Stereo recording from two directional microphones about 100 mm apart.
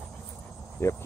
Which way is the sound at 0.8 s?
30° left (ahead or behind).